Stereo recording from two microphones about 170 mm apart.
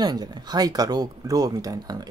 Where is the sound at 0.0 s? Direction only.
25° right (ahead or behind).